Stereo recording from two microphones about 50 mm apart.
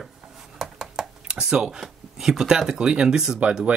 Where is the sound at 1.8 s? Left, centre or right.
Centre.